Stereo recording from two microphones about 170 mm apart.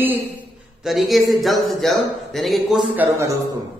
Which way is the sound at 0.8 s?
Centre (ahead or behind).